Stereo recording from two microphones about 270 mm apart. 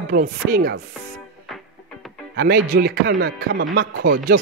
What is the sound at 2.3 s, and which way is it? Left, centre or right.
Speech, right.